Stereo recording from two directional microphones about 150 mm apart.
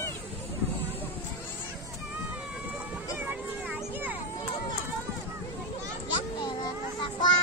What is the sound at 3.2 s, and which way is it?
Children playing, 10° right (ahead or behind).